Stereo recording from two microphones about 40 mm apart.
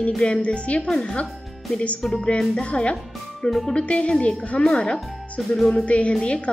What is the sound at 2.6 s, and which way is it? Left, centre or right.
Speech, left.